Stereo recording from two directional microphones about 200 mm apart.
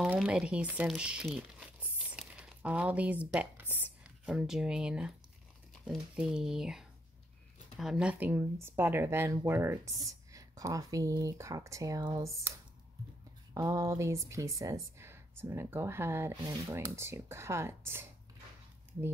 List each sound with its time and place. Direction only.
0.0 s speech: 5° right (ahead or behind)